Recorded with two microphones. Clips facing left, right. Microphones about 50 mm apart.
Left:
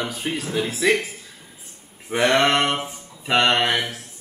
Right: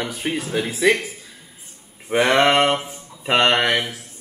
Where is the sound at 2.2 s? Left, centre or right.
Right.